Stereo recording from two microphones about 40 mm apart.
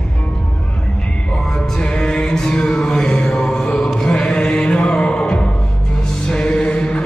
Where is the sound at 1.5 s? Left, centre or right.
Centre.